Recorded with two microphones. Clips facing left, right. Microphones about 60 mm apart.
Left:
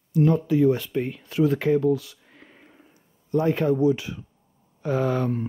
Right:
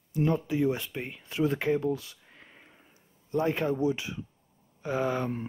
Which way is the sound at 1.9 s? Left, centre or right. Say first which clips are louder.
Left 8 dB; right.